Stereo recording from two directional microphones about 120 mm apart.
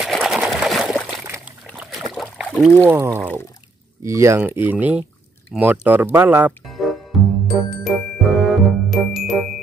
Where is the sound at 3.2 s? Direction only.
20° left (ahead or behind).